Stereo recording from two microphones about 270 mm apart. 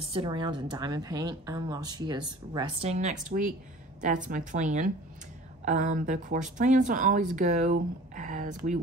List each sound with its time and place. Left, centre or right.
0.0 s a woman's voice: centre